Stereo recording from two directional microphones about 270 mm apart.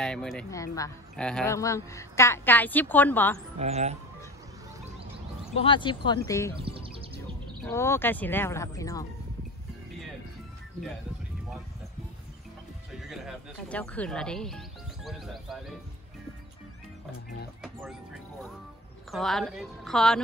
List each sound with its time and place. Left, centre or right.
0.0 s speech: centre
3.5 s speech: right
5.5 s speech: centre
6.6 s music: centre
7.6 s speech: centre
12.9 s speech: centre
17.6 s speech: centre